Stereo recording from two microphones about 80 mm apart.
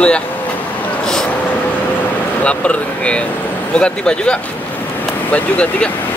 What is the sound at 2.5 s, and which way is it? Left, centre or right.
Speech, centre.